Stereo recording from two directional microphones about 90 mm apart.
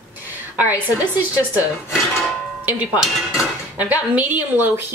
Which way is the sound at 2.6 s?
20° right (ahead or behind).